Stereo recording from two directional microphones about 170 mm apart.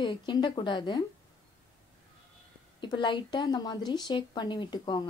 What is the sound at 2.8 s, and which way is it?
Speech, 25° left (ahead or behind).